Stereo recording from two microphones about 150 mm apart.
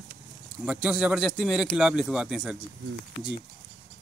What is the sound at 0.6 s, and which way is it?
A woman's voice, 5° right (ahead or behind).